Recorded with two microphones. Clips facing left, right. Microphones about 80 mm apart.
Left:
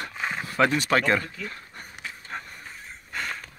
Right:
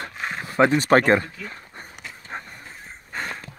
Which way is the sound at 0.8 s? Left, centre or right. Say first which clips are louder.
Right 6 dB; right.